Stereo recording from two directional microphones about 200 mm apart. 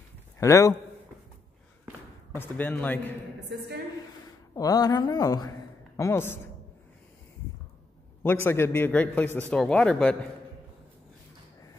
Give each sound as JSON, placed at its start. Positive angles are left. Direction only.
{"t": 0.4, "sound": "speech", "side_deg": 15}
{"t": 2.3, "sound": "speech", "side_deg": 10}
{"t": 3.3, "sound": "a woman's voice", "side_deg": -55}
{"t": 4.6, "sound": "speech", "side_deg": 20}
{"t": 8.5, "sound": "speech", "side_deg": 10}